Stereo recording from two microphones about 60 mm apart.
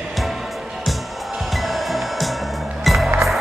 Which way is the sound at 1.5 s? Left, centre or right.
Centre.